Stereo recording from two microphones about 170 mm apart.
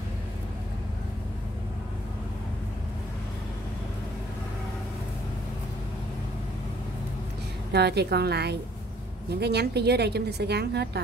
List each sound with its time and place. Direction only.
7.7 s a woman's voice: 75° right (ahead or behind)